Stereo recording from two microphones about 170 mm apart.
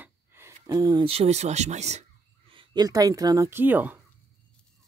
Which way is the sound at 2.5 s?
25° right (ahead or behind).